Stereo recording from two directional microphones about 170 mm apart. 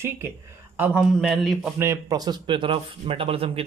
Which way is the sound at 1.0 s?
Centre (ahead or behind).